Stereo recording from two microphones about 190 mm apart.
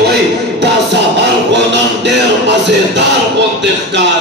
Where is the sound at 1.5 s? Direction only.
65° right (ahead or behind).